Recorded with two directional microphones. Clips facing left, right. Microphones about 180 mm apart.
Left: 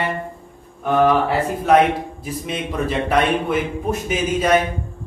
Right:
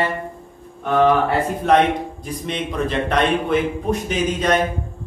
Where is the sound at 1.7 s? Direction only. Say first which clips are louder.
Left 1 dB; 5° left (ahead or behind).